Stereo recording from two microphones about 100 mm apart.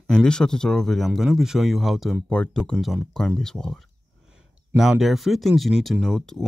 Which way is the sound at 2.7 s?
5° right (ahead or behind).